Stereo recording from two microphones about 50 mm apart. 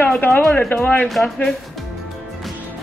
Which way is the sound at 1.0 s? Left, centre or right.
Centre.